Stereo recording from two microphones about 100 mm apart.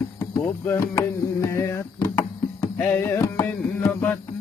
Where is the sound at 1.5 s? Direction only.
25° left (ahead or behind).